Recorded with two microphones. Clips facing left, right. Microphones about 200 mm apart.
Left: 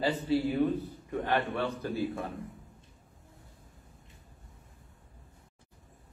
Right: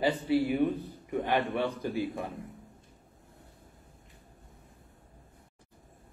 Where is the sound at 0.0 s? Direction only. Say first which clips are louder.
Right 1 dB; 15° right (ahead or behind).